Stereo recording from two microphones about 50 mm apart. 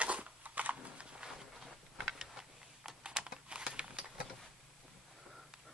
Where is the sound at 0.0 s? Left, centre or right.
Right.